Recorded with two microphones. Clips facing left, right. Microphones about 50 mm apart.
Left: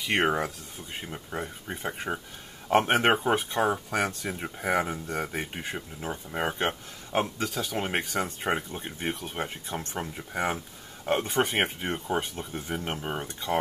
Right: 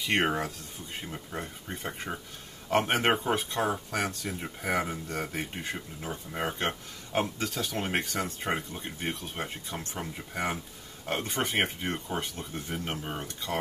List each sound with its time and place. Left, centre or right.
0.0 s speech: centre
2.7 s speech: left
7.3 s speech: centre
9.9 s speech: left
12.1 s speech: centre